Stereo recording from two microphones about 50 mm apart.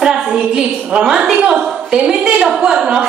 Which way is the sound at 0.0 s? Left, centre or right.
Centre.